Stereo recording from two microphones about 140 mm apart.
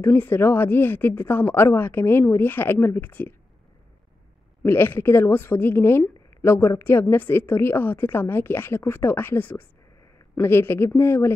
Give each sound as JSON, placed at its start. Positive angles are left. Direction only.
{"t": 0.0, "sound": "a woman's voice", "side_deg": 15}
{"t": 4.6, "sound": "a woman's voice", "side_deg": 15}